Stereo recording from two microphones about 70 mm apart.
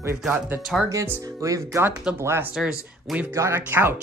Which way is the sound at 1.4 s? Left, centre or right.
Right.